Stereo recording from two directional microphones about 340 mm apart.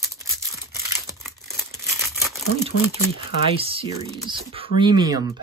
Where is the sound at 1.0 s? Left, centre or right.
Centre.